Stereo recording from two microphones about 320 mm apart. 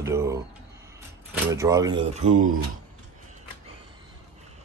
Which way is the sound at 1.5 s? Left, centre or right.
Centre.